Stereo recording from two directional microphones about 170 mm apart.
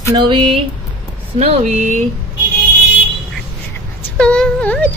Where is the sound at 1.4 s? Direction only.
35° right (ahead or behind).